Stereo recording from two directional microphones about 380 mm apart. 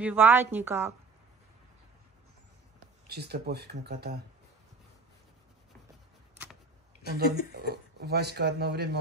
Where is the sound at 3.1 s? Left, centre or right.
Right.